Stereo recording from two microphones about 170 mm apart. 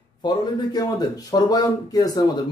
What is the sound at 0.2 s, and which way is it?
Speech, 25° left (ahead or behind).